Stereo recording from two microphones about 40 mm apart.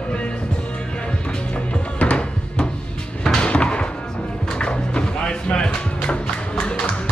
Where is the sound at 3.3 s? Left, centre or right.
Left.